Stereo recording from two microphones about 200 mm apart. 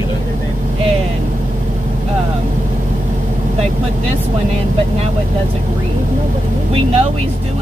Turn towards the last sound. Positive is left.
turn(degrees=-30)  # may be behind; listen again after turning